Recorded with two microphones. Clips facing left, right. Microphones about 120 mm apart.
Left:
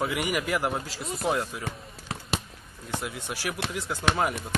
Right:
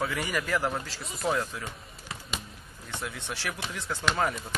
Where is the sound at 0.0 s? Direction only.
15° left (ahead or behind).